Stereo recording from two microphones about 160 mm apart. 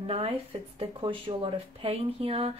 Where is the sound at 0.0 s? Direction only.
35° right (ahead or behind).